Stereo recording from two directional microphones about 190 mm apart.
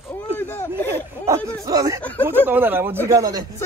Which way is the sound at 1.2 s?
15° right (ahead or behind).